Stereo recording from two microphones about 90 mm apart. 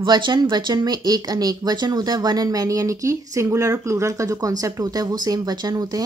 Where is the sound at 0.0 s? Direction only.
50° right (ahead or behind).